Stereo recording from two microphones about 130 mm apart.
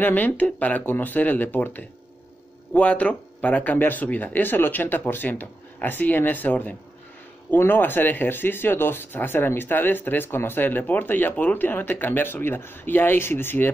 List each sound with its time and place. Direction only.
0.0 s speech: 10° left (ahead or behind)